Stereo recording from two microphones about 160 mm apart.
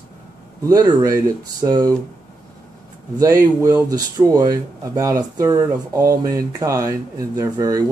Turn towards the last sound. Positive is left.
turn(degrees=-20)  # may be behind; listen again after turning